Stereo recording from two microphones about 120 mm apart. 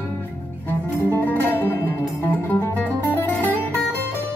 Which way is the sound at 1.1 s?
15° left (ahead or behind).